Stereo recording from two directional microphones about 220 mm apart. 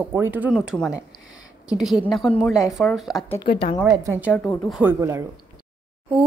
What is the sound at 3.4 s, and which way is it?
Speech, 25° left (ahead or behind).